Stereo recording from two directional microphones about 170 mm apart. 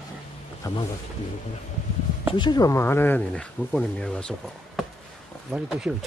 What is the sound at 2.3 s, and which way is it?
Speech, 25° left (ahead or behind).